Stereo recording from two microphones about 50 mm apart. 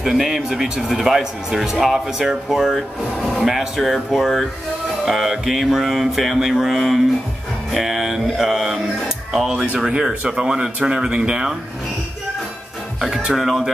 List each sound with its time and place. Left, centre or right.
0.0 s speech: centre
3.2 s mantra: centre
7.7 s speech: centre
9.5 s speech: centre
13.0 s mantra: centre